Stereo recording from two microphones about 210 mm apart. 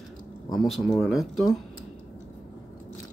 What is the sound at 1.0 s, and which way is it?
Speech, centre (ahead or behind).